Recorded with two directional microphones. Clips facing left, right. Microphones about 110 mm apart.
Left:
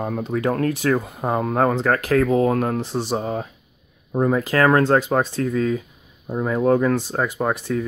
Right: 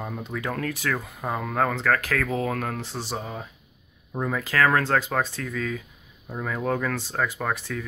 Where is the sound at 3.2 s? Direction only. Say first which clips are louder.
Left 9 dB; 50° left (ahead or behind).